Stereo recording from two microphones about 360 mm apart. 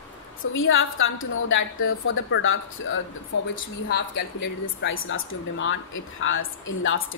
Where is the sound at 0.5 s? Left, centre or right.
Left.